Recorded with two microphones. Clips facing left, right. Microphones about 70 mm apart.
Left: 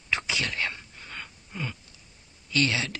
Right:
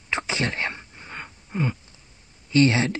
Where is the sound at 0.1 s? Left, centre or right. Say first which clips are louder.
Right 3 dB; right.